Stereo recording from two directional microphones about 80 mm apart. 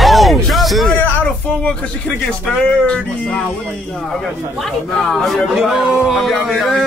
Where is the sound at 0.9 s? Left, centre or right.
Left.